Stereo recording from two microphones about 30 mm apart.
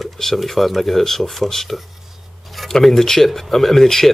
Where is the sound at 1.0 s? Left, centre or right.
Centre.